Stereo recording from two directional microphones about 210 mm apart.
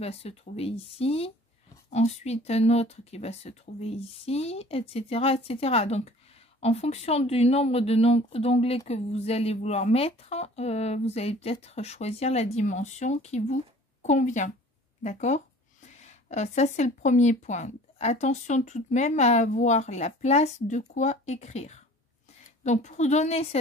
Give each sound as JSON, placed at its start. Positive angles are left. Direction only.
{"t": 0.0, "sound": "speech", "side_deg": 30}